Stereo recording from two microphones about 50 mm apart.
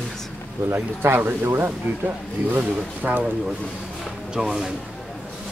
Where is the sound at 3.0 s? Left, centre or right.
Right.